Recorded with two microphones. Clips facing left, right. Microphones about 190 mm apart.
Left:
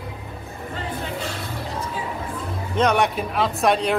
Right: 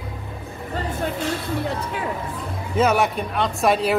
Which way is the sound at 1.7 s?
65° right (ahead or behind).